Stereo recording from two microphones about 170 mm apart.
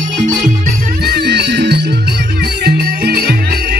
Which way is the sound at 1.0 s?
75° right (ahead or behind).